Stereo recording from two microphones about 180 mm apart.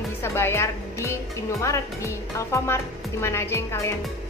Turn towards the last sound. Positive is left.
turn(degrees=15)  # may be behind; listen again after turning